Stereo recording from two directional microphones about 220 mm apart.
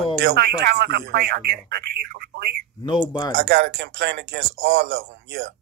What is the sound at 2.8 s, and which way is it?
Speech, 20° left (ahead or behind).